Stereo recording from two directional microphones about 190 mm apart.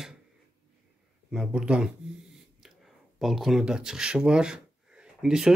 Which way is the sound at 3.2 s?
Centre (ahead or behind).